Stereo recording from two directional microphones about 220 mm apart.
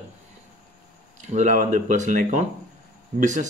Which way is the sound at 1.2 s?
35° right (ahead or behind).